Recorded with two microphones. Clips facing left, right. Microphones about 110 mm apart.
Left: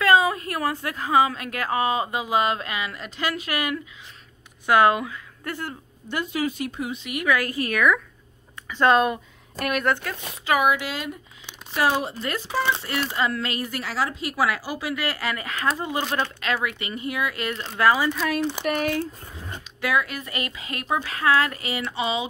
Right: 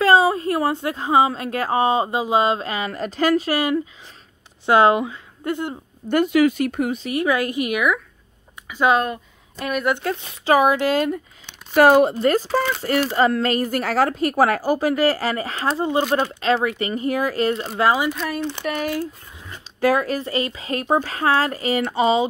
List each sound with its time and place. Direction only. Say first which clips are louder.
0.0 s a woman's voice: right 4 dB; 30° right (ahead or behind)
6.0 s speech: right 10 dB; 65° right (ahead or behind)
7.0 s speech: even; 30° right (ahead or behind); by 10.0 s 15° right (ahead or behind)
10.4 s speech: right 5 dB; 35° right (ahead or behind)
10.8 s a woman's voice: right 12 dB; 50° right (ahead or behind)
17.7 s speech: even; 25° right (ahead or behind)
18.4 s speech: even; 10° left (ahead or behind)
19.8 s speech: right 6 dB; 40° right (ahead or behind)